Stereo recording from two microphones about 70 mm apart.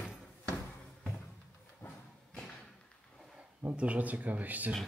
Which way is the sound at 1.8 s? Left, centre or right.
Left.